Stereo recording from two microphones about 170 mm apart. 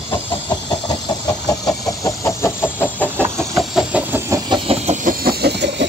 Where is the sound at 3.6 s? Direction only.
5° right (ahead or behind).